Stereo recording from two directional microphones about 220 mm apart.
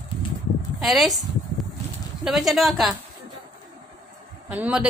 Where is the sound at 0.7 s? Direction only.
Centre (ahead or behind).